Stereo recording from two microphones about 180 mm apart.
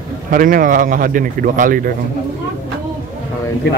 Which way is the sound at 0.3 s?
50° right (ahead or behind).